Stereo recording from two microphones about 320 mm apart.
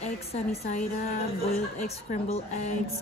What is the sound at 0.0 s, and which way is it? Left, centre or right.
Speech, centre.